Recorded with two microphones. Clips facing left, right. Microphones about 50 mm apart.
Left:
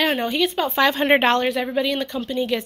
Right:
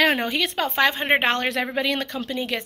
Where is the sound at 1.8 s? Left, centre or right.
Right.